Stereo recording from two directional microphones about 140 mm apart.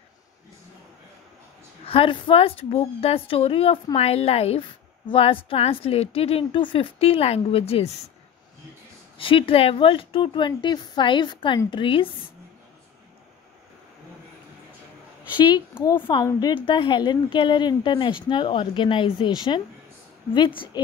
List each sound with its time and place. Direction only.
1.9 s a woman's voice: 40° left (ahead or behind)
9.2 s a woman's voice: 40° left (ahead or behind)
15.3 s a woman's voice: 30° left (ahead or behind)
20.3 s a woman's voice: 35° left (ahead or behind)